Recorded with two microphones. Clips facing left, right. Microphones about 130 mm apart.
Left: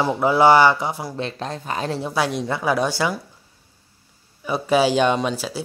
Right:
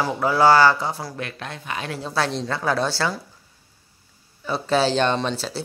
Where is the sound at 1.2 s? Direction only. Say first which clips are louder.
Left 5 dB; 30° left (ahead or behind).